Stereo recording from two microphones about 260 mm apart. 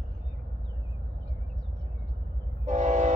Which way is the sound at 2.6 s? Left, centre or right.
Right.